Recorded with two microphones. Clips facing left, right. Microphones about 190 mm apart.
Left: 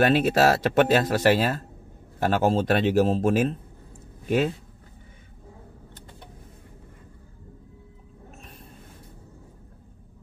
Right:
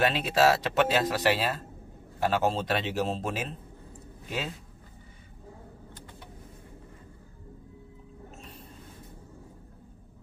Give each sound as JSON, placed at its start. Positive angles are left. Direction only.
{"t": 0.0, "sound": "speech", "side_deg": 50}